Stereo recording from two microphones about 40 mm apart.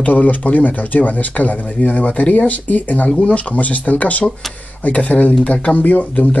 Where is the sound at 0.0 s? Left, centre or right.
Left.